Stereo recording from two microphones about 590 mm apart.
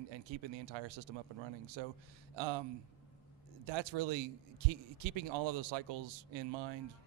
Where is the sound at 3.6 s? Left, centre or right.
Right.